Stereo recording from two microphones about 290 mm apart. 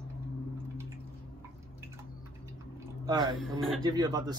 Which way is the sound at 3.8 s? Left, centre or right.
Centre.